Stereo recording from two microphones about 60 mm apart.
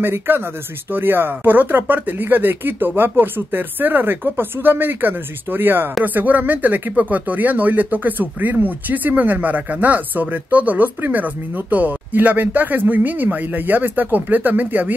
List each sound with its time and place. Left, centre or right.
0.0 s speech: right